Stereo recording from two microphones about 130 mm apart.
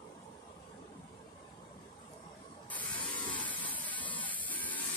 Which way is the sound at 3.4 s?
10° left (ahead or behind).